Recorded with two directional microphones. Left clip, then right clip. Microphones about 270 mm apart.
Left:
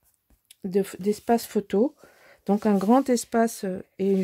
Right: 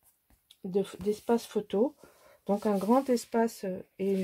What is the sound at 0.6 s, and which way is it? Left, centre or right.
Speech, left.